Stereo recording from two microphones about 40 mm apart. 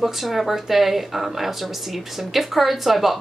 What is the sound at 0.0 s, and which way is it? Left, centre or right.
Speech, centre.